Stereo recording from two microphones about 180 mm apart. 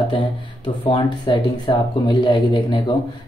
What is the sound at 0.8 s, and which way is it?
Speech, 25° left (ahead or behind).